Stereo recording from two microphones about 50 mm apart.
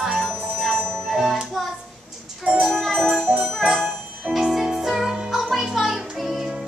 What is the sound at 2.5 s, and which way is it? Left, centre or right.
Music, centre.